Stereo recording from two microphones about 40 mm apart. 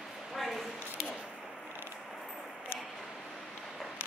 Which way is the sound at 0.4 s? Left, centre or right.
Centre.